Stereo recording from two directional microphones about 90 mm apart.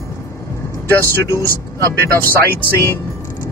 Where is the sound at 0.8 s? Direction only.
25° left (ahead or behind).